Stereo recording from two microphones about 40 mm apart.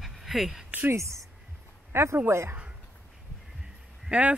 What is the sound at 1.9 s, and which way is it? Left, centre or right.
Speech, right.